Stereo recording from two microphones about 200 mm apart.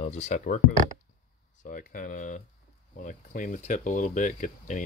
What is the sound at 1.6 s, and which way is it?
Speech, 40° left (ahead or behind).